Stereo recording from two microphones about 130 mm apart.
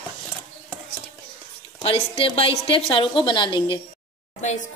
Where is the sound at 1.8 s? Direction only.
45° left (ahead or behind).